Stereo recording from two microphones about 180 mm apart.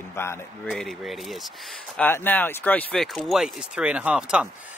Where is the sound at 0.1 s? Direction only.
15° left (ahead or behind).